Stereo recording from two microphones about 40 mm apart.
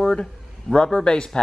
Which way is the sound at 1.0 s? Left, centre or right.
Left.